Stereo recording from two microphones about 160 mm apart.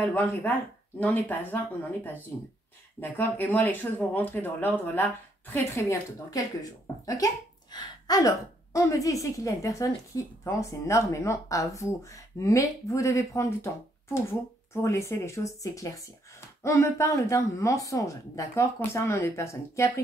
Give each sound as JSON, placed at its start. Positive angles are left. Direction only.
{"t": 0.0, "sound": "speech", "side_deg": 10}
{"t": 7.7, "sound": "a woman's voice", "side_deg": 25}
{"t": 14.7, "sound": "speech", "side_deg": 20}